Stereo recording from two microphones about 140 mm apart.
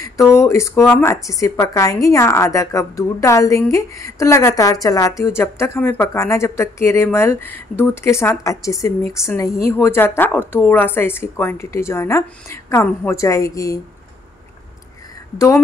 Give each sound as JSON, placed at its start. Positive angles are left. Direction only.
{"t": 0.0, "sound": "speech", "side_deg": 20}
{"t": 15.3, "sound": "speech", "side_deg": 20}